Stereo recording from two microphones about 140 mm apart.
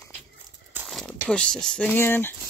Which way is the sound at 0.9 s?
Centre (ahead or behind).